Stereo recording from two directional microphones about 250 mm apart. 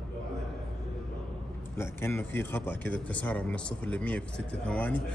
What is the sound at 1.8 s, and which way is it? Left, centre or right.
Speech, centre.